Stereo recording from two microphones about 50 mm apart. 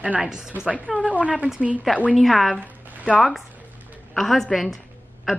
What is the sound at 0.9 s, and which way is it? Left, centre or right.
Speech, right.